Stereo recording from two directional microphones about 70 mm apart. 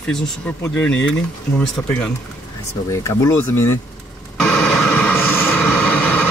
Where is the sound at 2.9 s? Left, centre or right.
Left.